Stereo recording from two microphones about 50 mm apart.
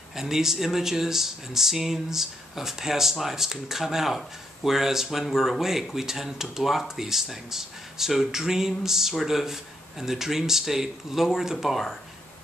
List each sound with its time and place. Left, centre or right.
0.1 s speech: centre